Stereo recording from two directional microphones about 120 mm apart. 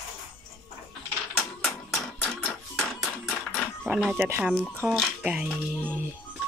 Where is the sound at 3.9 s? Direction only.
5° right (ahead or behind).